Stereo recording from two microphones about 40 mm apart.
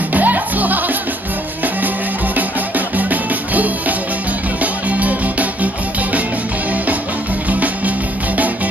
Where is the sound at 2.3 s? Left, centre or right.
Right.